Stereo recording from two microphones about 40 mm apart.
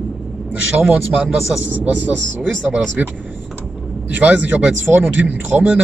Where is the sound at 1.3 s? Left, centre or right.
Centre.